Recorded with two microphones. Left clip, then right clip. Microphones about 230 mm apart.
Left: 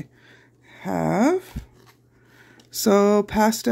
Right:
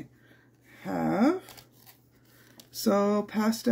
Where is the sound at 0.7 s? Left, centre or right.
Left.